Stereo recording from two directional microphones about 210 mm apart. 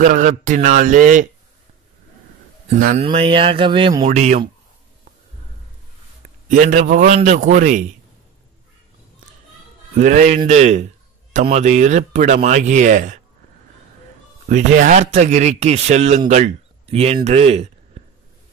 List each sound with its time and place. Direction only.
0.0 s speech: 35° right (ahead or behind)
3.0 s speech: 25° right (ahead or behind)
4.0 s speech: 35° right (ahead or behind)
6.5 s speech: 35° right (ahead or behind)
9.9 s speech: 35° right (ahead or behind)
14.5 s speech: 35° right (ahead or behind)